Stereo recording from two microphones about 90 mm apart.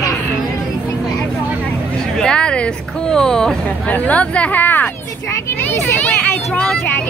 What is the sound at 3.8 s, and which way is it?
A child's voice, 15° left (ahead or behind).